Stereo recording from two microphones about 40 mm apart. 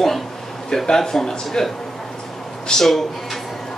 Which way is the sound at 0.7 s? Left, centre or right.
Centre.